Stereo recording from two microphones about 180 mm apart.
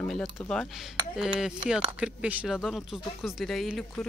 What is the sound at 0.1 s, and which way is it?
Speech, 5° left (ahead or behind).